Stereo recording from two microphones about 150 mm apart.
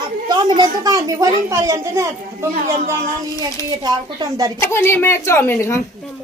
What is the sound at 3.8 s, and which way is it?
Speech, 30° right (ahead or behind).